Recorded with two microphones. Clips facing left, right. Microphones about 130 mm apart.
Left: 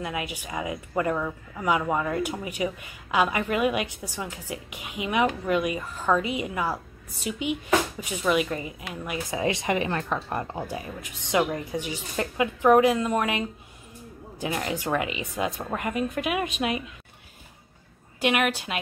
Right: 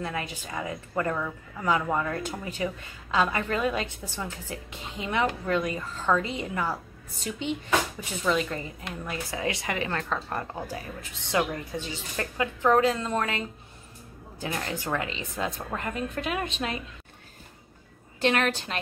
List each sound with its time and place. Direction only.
0.0 s a woman's voice: 15° left (ahead or behind)
18.2 s a woman's voice: 10° left (ahead or behind)